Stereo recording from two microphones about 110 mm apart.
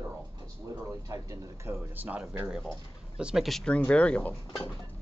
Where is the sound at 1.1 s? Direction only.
30° right (ahead or behind).